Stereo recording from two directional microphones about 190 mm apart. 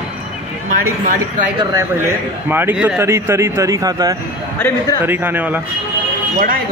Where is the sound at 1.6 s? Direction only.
15° right (ahead or behind).